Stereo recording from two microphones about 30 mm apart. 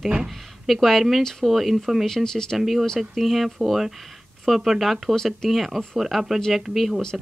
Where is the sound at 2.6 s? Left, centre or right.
Centre.